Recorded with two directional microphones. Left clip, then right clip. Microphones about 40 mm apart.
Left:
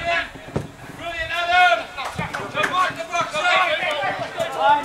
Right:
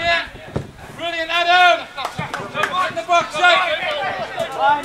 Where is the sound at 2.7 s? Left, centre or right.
Centre.